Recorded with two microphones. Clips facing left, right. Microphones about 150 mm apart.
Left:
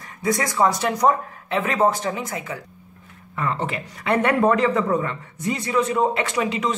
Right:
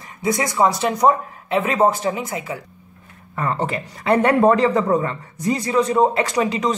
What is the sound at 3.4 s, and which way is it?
Speech, 40° right (ahead or behind).